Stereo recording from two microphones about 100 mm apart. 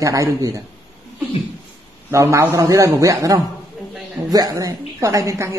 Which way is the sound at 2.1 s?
30° right (ahead or behind).